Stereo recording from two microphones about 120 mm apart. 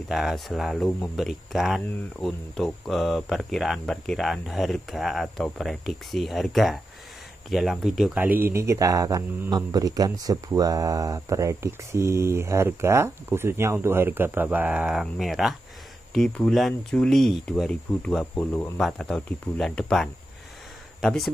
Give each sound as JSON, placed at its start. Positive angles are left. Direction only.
{"t": 0.1, "sound": "speech", "side_deg": 0}
{"t": 18.4, "sound": "speech", "side_deg": 15}
{"t": 18.8, "sound": "speech", "side_deg": 5}